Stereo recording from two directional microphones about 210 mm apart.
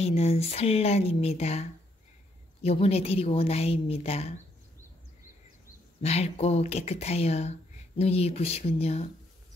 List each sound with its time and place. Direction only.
0.0 s a woman's voice: 30° left (ahead or behind)
6.0 s a woman's voice: 30° left (ahead or behind)